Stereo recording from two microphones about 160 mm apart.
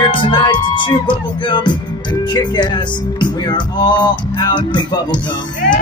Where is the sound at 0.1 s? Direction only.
30° left (ahead or behind).